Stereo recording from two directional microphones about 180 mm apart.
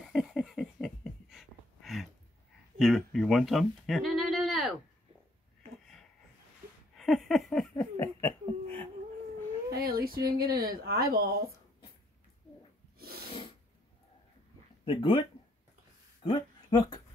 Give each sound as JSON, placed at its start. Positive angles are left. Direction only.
{"t": 0.0, "sound": "a sound", "side_deg": -5}
{"t": 2.8, "sound": "speech", "side_deg": 0}
{"t": 7.0, "sound": "laughter", "side_deg": 0}
{"t": 9.7, "sound": "speech", "side_deg": -55}
{"t": 12.9, "sound": "snort", "side_deg": -55}
{"t": 14.9, "sound": "speech", "side_deg": 30}
{"t": 16.2, "sound": "a sound", "side_deg": 25}